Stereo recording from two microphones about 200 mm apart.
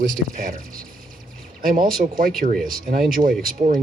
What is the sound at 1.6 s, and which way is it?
Speech, 45° right (ahead or behind).